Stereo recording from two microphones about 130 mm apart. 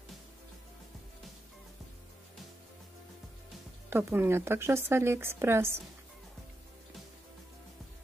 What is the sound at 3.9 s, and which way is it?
Speech, 15° right (ahead or behind).